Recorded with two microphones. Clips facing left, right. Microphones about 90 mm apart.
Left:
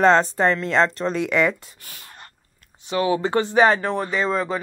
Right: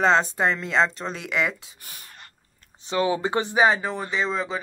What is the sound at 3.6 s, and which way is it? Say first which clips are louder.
Speech: left 2 dB; 5° right (ahead or behind).